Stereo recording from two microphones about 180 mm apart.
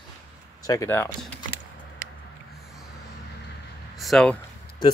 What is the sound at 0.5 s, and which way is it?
Speech, 20° left (ahead or behind).